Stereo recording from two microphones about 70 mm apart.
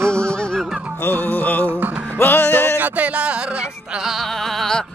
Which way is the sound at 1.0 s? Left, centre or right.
Left.